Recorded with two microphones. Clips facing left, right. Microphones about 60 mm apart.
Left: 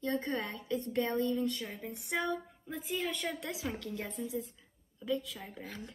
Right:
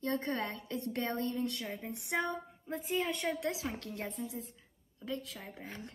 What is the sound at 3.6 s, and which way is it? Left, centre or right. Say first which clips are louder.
Speech: left 1 dB; right.